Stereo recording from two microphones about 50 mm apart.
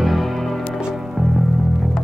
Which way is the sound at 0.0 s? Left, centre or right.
Centre.